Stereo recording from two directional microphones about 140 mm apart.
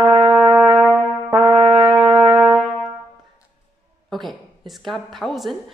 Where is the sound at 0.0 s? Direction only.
20° right (ahead or behind).